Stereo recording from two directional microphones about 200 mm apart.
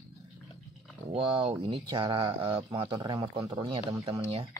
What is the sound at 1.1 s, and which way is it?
Speech, 25° right (ahead or behind).